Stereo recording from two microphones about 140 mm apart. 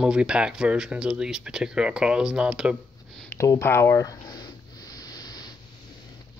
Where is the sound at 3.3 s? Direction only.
20° left (ahead or behind).